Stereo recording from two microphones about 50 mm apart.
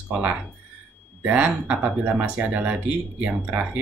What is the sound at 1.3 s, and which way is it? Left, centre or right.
Speech, right.